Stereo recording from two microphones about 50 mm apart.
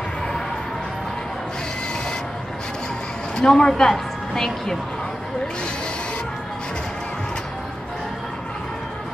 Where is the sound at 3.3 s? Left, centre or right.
Centre.